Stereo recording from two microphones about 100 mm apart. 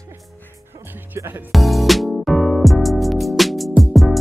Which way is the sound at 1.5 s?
Centre (ahead or behind).